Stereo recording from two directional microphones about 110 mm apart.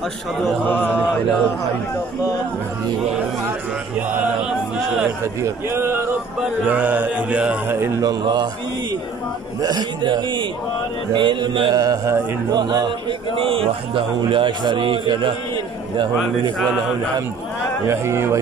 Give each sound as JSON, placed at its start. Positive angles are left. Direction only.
{"t": 0.7, "sound": "a sound", "side_deg": 15}
{"t": 5.2, "sound": "speech", "side_deg": -25}
{"t": 8.0, "sound": "speech", "side_deg": -40}
{"t": 9.6, "sound": "a man's voice", "side_deg": -40}
{"t": 11.7, "sound": "speech", "side_deg": -35}
{"t": 13.4, "sound": "a man's voice", "side_deg": -60}
{"t": 14.2, "sound": "a man's voice", "side_deg": -45}
{"t": 17.8, "sound": "speech", "side_deg": -25}